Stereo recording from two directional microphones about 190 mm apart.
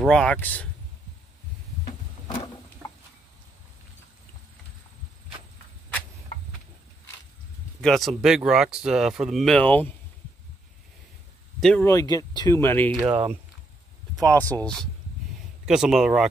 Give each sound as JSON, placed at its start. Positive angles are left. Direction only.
{"t": 0.0, "sound": "speech", "side_deg": 5}
{"t": 2.2, "sound": "a sound", "side_deg": 25}
{"t": 7.8, "sound": "speech", "side_deg": 0}
{"t": 11.6, "sound": "speech", "side_deg": 5}
{"t": 11.9, "sound": "speech", "side_deg": 15}
{"t": 12.9, "sound": "speech", "side_deg": -5}
{"t": 15.6, "sound": "speech", "side_deg": -5}